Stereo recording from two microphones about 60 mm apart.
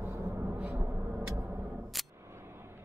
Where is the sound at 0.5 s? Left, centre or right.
Right.